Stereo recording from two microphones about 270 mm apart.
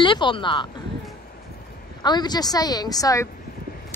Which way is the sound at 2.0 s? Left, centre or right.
Centre.